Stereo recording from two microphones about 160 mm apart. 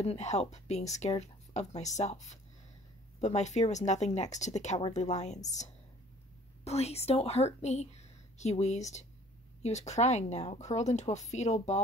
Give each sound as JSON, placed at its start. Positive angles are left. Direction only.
{"t": 0.0, "sound": "a woman's voice", "side_deg": 45}